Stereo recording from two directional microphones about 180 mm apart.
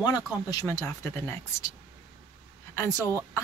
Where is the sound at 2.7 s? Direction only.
15° left (ahead or behind).